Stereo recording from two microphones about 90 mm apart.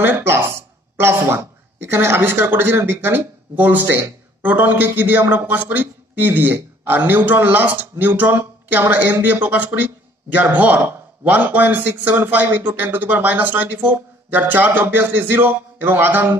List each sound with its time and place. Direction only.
0.0 s a man's voice: 25° right (ahead or behind)